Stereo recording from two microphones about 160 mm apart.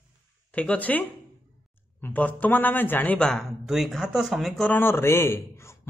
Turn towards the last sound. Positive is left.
turn(degrees=15)  # may be behind; listen again after turning